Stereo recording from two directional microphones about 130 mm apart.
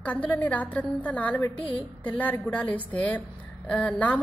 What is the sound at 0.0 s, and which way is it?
A woman's voice, 10° left (ahead or behind).